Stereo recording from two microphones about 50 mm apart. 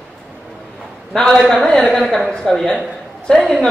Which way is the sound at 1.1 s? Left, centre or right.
Centre.